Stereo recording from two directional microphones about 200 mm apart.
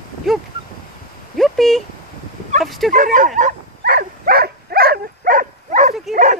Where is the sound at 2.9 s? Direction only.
40° right (ahead or behind).